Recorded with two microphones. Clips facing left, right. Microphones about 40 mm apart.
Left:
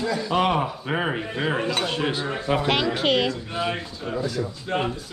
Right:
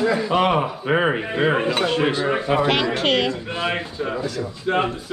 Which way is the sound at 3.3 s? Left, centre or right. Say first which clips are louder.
Right 3 dB; right.